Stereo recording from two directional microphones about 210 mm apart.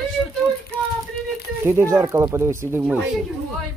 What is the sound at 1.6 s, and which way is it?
Speech, 15° right (ahead or behind).